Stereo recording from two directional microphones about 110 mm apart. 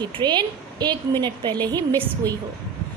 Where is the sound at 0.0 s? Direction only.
40° right (ahead or behind).